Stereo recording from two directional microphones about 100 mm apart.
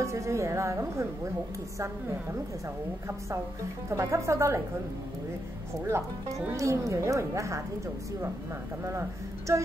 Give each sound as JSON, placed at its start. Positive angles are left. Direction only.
{"t": 0.0, "sound": "speech", "side_deg": -30}
{"t": 3.9, "sound": "speech", "side_deg": -30}
{"t": 5.9, "sound": "speech", "side_deg": -30}